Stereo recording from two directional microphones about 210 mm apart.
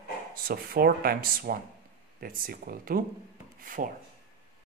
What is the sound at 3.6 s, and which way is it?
Rub, 40° right (ahead or behind).